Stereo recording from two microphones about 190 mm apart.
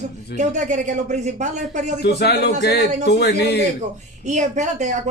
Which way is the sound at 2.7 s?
40° right (ahead or behind).